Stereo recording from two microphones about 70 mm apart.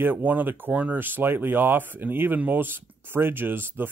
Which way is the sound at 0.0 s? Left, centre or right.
Right.